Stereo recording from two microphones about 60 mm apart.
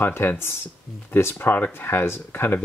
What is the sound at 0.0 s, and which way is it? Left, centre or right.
Speech, left.